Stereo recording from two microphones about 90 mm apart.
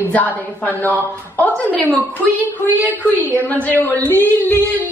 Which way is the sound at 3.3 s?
20° left (ahead or behind).